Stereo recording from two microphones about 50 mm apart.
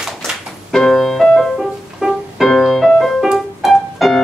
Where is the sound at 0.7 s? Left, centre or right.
Centre.